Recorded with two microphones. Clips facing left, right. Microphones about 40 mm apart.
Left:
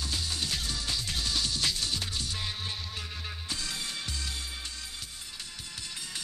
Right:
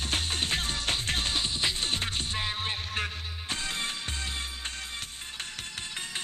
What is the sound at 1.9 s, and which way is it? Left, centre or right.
Music, right.